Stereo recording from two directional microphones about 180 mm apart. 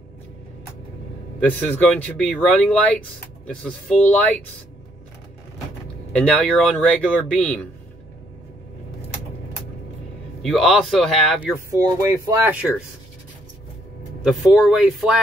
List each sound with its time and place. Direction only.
1.4 s speech: 10° left (ahead or behind)
6.1 s a man's voice: 5° left (ahead or behind)
10.4 s a man's voice: centre (ahead or behind)
11.8 s speech: 20° right (ahead or behind)
14.2 s a man's voice: 5° right (ahead or behind)